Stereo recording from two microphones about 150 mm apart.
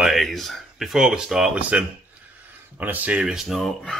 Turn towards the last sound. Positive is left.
turn(degrees=5)  # may be behind; listen again after turning